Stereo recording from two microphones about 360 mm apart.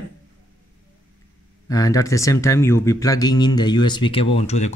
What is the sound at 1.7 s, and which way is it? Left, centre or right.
Speech, centre.